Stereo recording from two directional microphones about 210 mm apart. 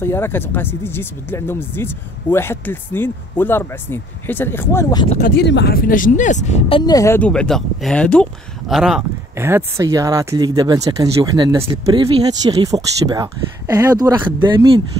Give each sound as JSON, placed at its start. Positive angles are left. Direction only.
{"t": 0.0, "sound": "speech", "side_deg": 10}
{"t": 5.4, "sound": "speech", "side_deg": 55}
{"t": 6.8, "sound": "speech", "side_deg": 15}